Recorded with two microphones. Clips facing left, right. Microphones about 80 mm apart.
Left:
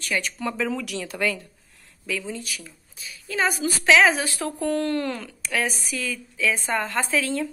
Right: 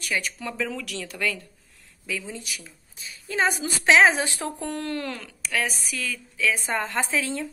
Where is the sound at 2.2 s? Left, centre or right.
Right.